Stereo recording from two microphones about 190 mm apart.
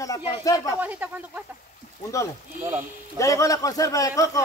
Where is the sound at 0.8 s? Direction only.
10° right (ahead or behind).